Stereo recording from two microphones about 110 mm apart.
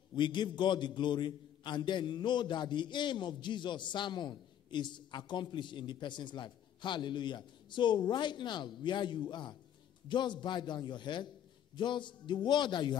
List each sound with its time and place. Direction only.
0.1 s a man's voice: 45° left (ahead or behind)